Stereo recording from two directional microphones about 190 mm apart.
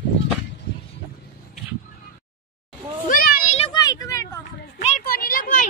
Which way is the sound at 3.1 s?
50° left (ahead or behind).